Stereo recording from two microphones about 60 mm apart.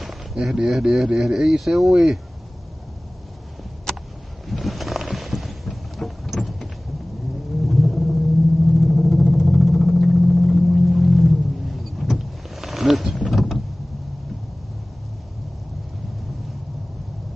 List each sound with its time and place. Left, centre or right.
0.0 s speech: centre
4.5 s horse: centre
7.6 s rumble: centre
8.7 s vehicle: centre